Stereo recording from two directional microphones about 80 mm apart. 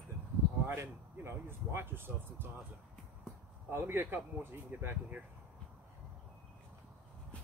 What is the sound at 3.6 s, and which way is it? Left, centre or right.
Speech, right.